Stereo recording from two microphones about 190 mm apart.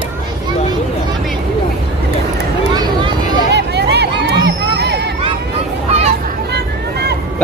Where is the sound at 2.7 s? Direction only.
20° right (ahead or behind).